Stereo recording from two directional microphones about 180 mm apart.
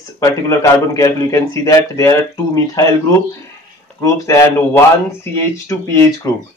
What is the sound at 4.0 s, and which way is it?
A man's voice, 15° left (ahead or behind).